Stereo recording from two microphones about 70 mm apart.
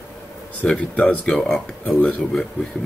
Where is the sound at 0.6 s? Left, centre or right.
Centre.